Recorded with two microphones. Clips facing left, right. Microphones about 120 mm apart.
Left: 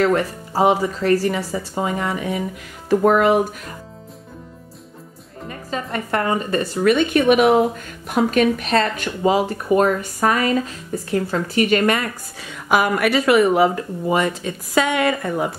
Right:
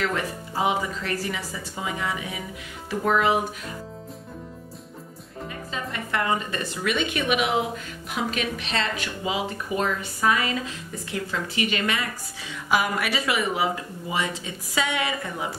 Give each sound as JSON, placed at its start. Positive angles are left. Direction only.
{"t": 0.0, "sound": "speech", "side_deg": 40}
{"t": 5.5, "sound": "speech", "side_deg": 45}